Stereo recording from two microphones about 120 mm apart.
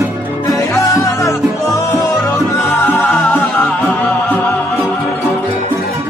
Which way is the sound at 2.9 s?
15° left (ahead or behind).